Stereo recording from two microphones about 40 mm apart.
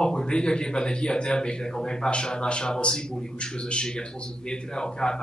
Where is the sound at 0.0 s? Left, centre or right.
Centre.